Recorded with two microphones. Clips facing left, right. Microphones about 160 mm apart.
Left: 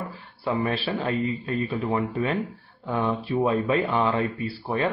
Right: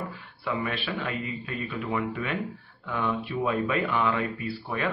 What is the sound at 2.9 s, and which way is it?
A man's voice, 35° left (ahead or behind).